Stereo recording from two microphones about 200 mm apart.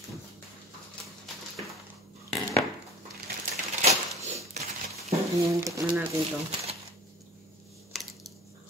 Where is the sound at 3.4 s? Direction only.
35° right (ahead or behind).